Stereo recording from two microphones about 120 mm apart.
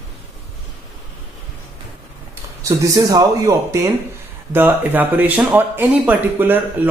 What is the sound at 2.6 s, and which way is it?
Speech, 30° right (ahead or behind).